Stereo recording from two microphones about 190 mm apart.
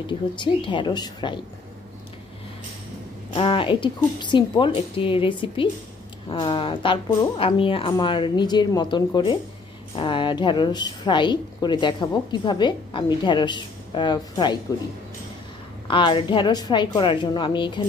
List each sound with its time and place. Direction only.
0.0 s a woman's voice: 25° left (ahead or behind)
3.3 s a woman's voice: 25° left (ahead or behind)
15.9 s a woman's voice: 25° left (ahead or behind)